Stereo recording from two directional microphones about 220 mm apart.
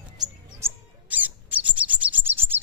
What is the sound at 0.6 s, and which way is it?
Squawk, 10° right (ahead or behind).